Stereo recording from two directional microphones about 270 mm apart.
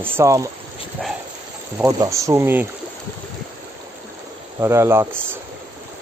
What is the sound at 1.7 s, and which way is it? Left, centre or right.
Speech, centre.